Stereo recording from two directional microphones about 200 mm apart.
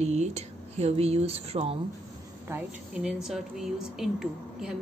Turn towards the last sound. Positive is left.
turn(degrees=0)  # may be behind; listen again after turning